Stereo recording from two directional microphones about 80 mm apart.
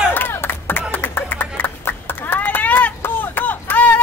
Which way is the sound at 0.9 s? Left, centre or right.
Left.